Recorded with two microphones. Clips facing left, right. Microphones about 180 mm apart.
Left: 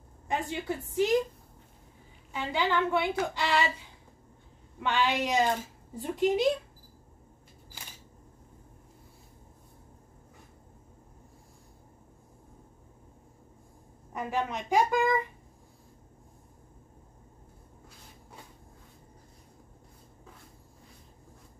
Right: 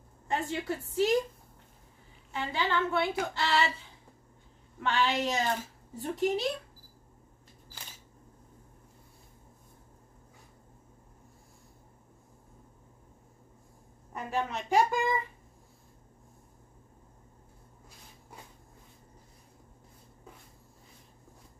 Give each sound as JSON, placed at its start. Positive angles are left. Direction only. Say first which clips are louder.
{"t": 0.3, "sound": "a woman's voice", "louder": "even", "side_deg": 15}
{"t": 2.3, "sound": "a woman's voice", "louder": "left 2 dB", "side_deg": 15}
{"t": 4.8, "sound": "a woman's voice", "louder": "left 1 dB", "side_deg": 15}
{"t": 14.1, "sound": "a woman's voice", "louder": "left 1 dB", "side_deg": 15}